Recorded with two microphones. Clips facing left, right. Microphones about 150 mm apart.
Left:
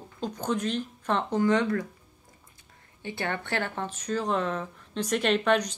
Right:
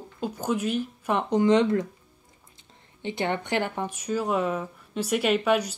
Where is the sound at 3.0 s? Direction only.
20° right (ahead or behind).